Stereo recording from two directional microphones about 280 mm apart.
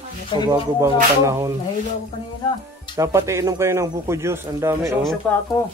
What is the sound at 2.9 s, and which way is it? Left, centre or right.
Speech, centre.